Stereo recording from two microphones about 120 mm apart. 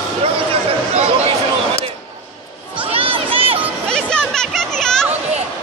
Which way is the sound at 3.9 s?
5° left (ahead or behind).